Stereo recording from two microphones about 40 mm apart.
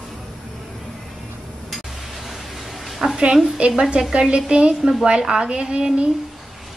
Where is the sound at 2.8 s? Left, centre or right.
Centre.